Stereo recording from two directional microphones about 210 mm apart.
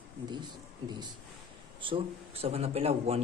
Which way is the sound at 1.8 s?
25° right (ahead or behind).